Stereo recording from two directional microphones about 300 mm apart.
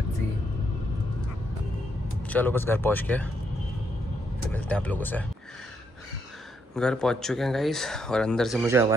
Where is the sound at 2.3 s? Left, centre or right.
Centre.